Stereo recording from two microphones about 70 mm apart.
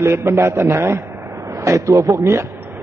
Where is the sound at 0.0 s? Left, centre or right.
Right.